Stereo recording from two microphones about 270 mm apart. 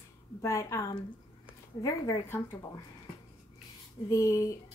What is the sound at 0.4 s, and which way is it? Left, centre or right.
A woman's voice, centre.